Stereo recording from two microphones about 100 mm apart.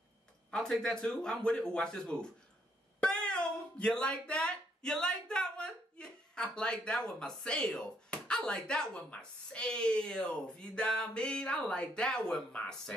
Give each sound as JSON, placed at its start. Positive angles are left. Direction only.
{"t": 0.5, "sound": "speech", "side_deg": 5}